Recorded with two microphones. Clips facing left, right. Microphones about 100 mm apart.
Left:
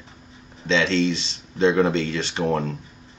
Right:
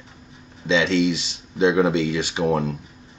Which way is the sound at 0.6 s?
15° right (ahead or behind).